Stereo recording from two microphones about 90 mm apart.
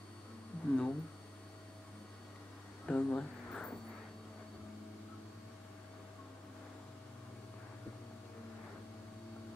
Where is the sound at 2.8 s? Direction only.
15° left (ahead or behind).